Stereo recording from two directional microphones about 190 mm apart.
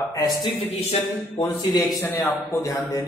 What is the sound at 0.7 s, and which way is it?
Speech, 30° left (ahead or behind).